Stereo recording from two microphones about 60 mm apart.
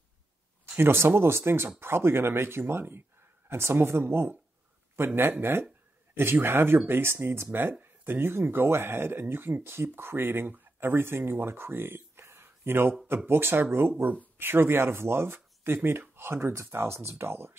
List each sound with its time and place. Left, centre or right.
0.7 s speech: right